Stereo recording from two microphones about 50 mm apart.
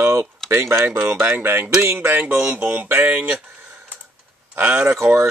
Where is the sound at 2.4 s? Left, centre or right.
Right.